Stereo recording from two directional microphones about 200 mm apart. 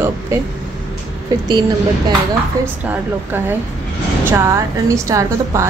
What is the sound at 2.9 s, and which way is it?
A woman's voice, 10° right (ahead or behind).